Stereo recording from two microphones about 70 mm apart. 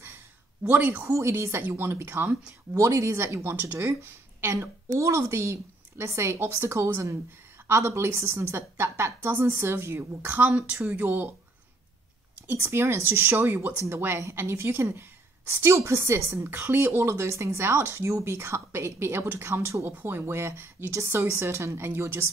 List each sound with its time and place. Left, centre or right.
0.7 s speech: right
1.1 s speech: right
2.8 s a woman's voice: right
10.2 s speech: right
12.4 s speech: right
19.9 s speech: right